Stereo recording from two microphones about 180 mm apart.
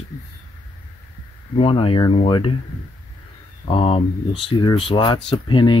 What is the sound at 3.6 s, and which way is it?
Speech, 30° left (ahead or behind).